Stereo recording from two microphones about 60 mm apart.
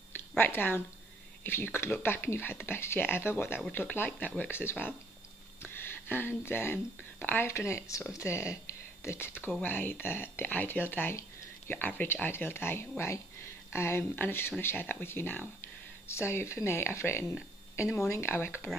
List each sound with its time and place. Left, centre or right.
0.4 s speech: left
7.4 s speech: left